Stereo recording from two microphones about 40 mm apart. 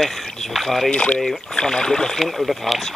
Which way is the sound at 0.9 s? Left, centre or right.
Left.